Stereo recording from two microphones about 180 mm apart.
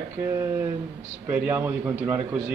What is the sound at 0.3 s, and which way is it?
Speech, 15° right (ahead or behind).